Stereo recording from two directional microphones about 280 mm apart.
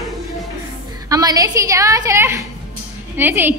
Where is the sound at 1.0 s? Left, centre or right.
Centre.